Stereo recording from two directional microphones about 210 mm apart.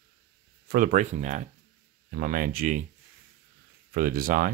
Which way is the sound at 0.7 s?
40° right (ahead or behind).